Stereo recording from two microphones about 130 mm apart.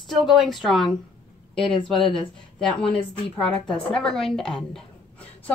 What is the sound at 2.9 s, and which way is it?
A woman's voice, 40° left (ahead or behind).